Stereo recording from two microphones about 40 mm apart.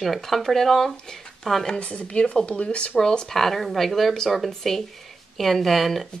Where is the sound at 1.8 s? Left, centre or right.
Left.